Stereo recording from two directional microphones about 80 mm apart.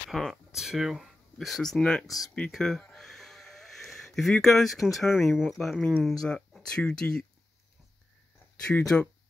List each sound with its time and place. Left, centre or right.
0.1 s speech: centre
2.5 s a sound: centre
4.9 s speech: centre
8.7 s speech: centre